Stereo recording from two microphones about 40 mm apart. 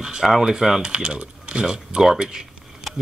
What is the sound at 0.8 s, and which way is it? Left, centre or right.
Speech, right.